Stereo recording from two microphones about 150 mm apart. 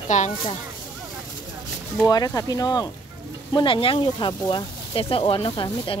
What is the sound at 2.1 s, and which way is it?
Speech, 25° left (ahead or behind).